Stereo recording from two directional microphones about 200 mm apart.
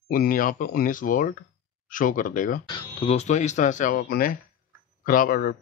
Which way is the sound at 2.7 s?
30° left (ahead or behind).